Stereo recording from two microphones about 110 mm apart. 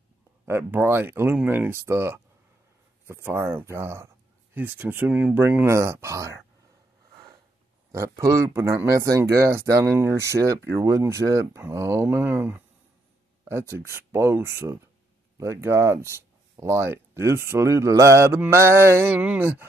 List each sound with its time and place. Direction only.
0.5 s speech: 20° right (ahead or behind)
3.5 s speech: 25° right (ahead or behind)
7.9 s speech: 30° right (ahead or behind)